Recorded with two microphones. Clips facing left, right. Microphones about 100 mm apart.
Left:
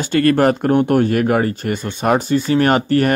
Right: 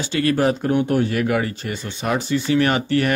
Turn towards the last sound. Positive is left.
turn(degrees=45)  # may be behind; listen again after turning